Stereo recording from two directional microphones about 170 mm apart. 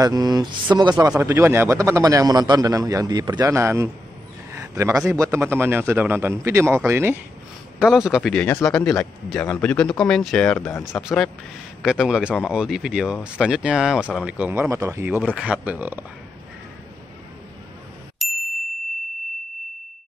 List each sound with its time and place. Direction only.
0.0 s a man's voice: 20° right (ahead or behind)
4.5 s a sound: 15° right (ahead or behind)
5.1 s a man's voice: 15° right (ahead or behind)
7.8 s speech: centre (ahead or behind)
10.7 s speech: 15° left (ahead or behind)
11.0 s a man's voice: centre (ahead or behind)
18.2 s ding: centre (ahead or behind)